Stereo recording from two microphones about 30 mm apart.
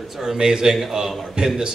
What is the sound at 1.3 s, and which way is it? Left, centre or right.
Speech, right.